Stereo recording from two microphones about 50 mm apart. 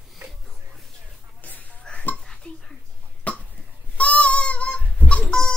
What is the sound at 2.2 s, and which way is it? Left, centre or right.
Dishes, centre.